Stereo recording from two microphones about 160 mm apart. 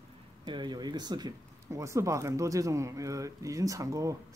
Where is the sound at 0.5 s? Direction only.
25° right (ahead or behind).